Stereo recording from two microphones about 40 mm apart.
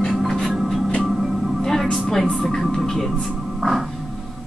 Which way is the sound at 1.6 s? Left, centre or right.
Centre.